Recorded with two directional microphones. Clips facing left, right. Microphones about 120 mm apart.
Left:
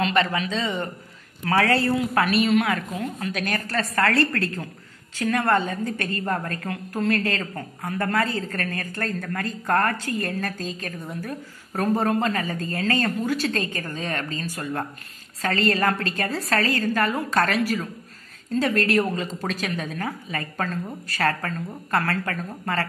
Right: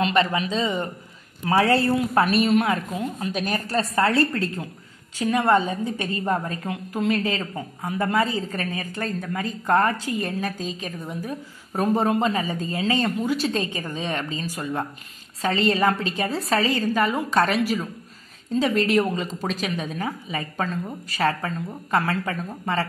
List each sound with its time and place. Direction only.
0.0 s a woman's voice: 20° right (ahead or behind)